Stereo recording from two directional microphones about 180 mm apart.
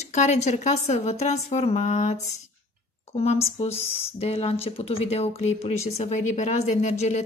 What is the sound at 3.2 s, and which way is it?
Speech, 35° left (ahead or behind).